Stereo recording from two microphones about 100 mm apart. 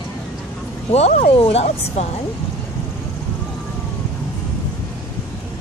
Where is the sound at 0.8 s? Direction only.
90° left.